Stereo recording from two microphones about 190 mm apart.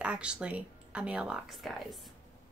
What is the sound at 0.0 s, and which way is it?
A woman's voice, 5° right (ahead or behind).